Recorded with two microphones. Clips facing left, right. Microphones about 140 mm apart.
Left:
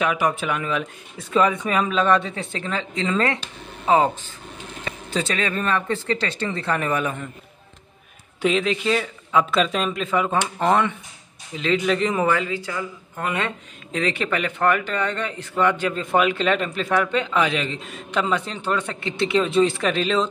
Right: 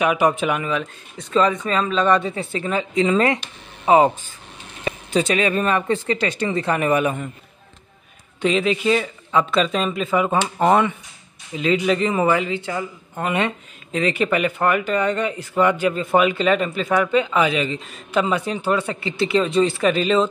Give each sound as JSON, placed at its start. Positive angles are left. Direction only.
{"t": 0.0, "sound": "speech", "side_deg": -15}
{"t": 0.7, "sound": "speech", "side_deg": 5}
{"t": 8.4, "sound": "speech", "side_deg": 0}
{"t": 12.4, "sound": "speech", "side_deg": -25}
{"t": 13.9, "sound": "speech", "side_deg": -5}